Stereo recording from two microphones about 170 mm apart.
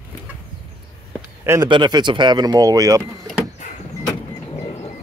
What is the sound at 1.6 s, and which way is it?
Speech, 25° right (ahead or behind).